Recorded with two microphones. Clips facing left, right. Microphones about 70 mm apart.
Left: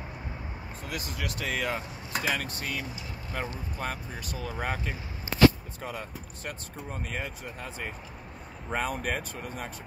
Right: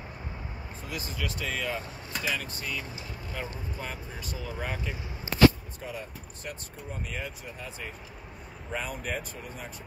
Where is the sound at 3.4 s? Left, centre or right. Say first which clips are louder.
Left 3 dB; left.